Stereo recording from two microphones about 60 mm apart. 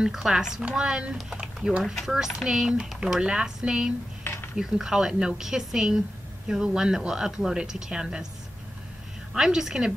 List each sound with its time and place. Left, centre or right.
0.0 s speech: centre
4.2 s a sound: left
4.6 s speech: centre
9.3 s speech: centre